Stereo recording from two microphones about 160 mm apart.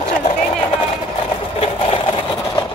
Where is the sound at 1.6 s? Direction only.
30° left (ahead or behind).